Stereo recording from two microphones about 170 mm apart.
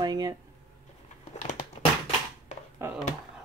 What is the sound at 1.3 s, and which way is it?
Crumpling, 40° left (ahead or behind).